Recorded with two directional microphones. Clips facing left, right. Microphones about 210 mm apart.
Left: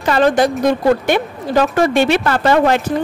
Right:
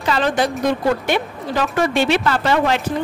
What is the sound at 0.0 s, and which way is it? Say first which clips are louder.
A woman's voice: left 5 dB; 50° left (ahead or behind).